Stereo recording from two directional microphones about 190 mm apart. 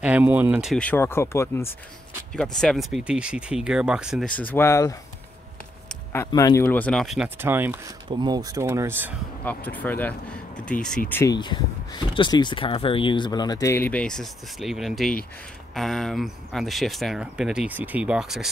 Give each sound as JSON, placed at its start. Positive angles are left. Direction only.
{"t": 0.0, "sound": "speech", "side_deg": -10}
{"t": 4.4, "sound": "speech", "side_deg": 10}
{"t": 6.1, "sound": "speech", "side_deg": 15}
{"t": 7.3, "sound": "speech", "side_deg": -10}
{"t": 8.1, "sound": "speech", "side_deg": -20}
{"t": 9.4, "sound": "speech", "side_deg": 10}
{"t": 11.3, "sound": "speech", "side_deg": 25}